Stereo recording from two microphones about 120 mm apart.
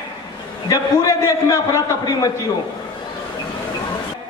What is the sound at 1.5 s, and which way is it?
Speech, 30° left (ahead or behind).